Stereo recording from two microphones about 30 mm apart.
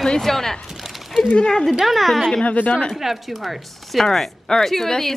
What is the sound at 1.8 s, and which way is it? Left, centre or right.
Speech, centre.